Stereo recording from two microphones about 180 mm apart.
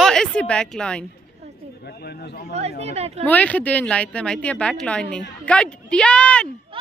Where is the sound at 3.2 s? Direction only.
10° left (ahead or behind).